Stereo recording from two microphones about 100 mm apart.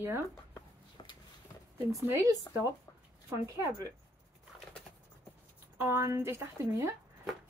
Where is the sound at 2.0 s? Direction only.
30° right (ahead or behind).